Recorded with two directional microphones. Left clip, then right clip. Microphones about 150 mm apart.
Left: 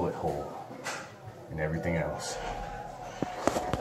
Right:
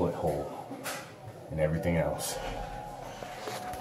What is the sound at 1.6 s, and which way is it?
Speech, 20° right (ahead or behind).